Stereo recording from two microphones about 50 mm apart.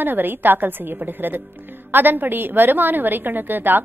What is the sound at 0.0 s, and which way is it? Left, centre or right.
A woman's voice, right.